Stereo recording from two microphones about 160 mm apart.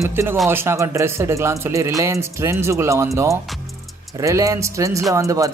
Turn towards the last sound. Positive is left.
turn(degrees=-20)  # may be behind; listen again after turning